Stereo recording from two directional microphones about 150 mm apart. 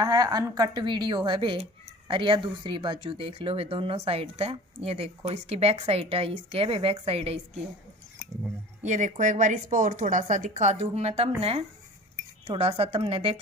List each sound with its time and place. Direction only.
0.0 s a woman's voice: 25° right (ahead or behind)
8.8 s speech: 55° right (ahead or behind)
12.4 s a woman's voice: 40° right (ahead or behind)